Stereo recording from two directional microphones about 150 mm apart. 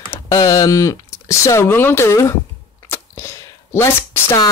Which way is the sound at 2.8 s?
20° left (ahead or behind).